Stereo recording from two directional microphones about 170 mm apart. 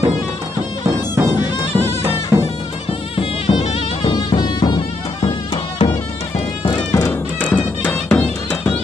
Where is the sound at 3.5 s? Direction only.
30° left (ahead or behind).